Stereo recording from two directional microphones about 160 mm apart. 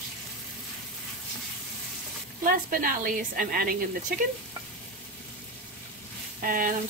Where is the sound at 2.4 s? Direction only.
60° right (ahead or behind).